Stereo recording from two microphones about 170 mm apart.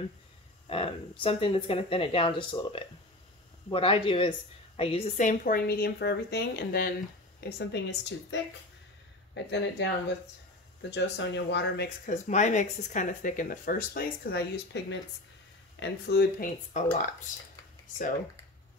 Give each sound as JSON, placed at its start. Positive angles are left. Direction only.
{"t": 0.7, "sound": "a woman's voice", "side_deg": 35}
{"t": 12.1, "sound": "a woman's voice", "side_deg": 45}